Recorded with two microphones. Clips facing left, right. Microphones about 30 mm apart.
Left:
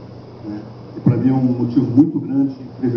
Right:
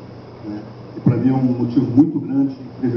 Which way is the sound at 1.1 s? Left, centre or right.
Centre.